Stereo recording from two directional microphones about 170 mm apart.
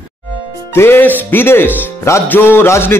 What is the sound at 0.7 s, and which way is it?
Speech, 15° left (ahead or behind).